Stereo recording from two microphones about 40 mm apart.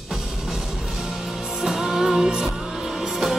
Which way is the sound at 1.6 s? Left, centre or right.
Centre.